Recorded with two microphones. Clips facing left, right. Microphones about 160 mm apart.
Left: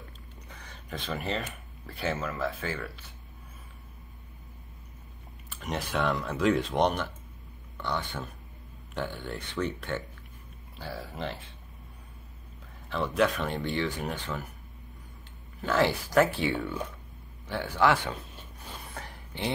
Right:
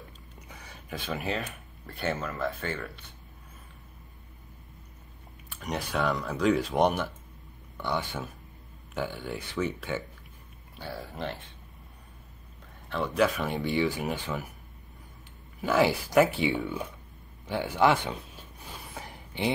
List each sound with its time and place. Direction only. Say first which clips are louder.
0.5 s speech: right 1 dB; 10° right (ahead or behind)
5.5 s speech: even; centre (ahead or behind)
12.9 s speech: even; centre (ahead or behind)
15.6 s speech: right 2 dB; 10° right (ahead or behind)
18.9 s a sound: right 4 dB; 15° right (ahead or behind)